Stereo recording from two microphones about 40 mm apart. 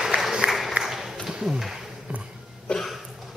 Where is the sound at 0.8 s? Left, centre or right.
Centre.